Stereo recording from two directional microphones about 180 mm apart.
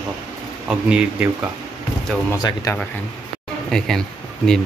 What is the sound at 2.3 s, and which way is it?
Speech, 20° left (ahead or behind).